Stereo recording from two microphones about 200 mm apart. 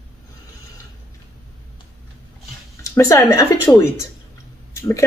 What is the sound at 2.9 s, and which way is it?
A woman's voice, 15° left (ahead or behind).